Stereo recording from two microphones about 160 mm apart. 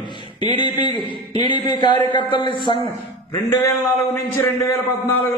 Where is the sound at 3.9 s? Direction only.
15° left (ahead or behind).